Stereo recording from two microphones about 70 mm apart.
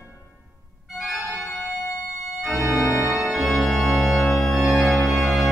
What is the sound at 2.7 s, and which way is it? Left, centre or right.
Organ, left.